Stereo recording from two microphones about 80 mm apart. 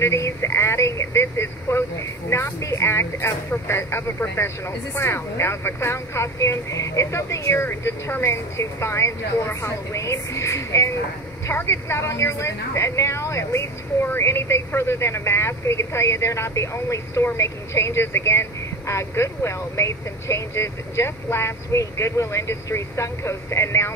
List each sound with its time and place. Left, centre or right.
0.0 s a woman's voice: left